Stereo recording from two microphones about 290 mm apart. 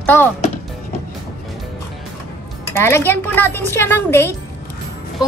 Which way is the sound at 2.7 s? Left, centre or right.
Centre.